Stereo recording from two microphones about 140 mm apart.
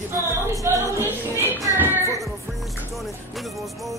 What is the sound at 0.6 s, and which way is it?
Speech, 20° right (ahead or behind).